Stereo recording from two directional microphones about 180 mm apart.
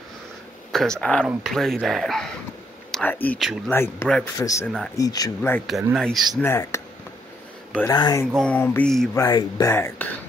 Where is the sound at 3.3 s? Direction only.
Centre (ahead or behind).